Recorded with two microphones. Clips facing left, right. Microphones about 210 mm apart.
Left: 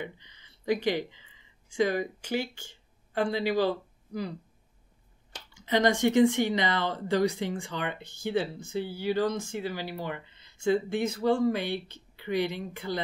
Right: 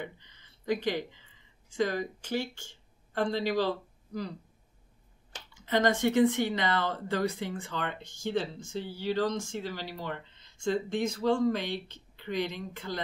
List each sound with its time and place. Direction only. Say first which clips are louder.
0.0 s speech: left 2 dB; 15° left (ahead or behind)
5.7 s speech: left 2 dB; 15° left (ahead or behind)
8.0 s speech: left 1 dB; 60° left (ahead or behind)
8.7 s speech: left 3 dB; 10° left (ahead or behind)